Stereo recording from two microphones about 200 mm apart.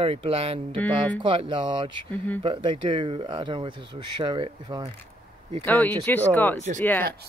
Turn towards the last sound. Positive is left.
turn(degrees=10)  # may be behind; listen again after turning